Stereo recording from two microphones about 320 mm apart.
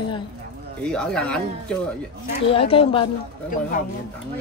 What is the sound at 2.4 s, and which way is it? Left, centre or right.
Speech, centre.